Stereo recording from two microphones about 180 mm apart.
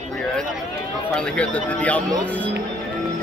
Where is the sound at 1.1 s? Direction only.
5° left (ahead or behind).